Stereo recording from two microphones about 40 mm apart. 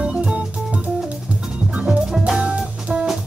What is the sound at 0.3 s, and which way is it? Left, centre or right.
Music, right.